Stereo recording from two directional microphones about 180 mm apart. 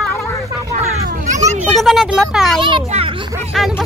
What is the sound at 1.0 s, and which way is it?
Children playing, 45° right (ahead or behind).